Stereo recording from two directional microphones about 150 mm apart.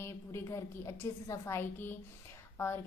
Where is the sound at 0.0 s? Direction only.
20° left (ahead or behind).